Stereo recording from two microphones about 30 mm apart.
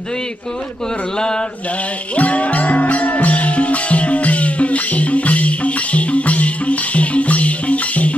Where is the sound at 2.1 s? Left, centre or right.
Left.